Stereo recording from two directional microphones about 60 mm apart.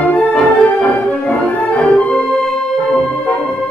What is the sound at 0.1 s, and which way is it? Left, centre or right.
Music, left.